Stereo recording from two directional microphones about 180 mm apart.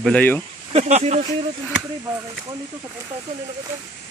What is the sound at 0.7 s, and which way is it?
Speech, 40° right (ahead or behind).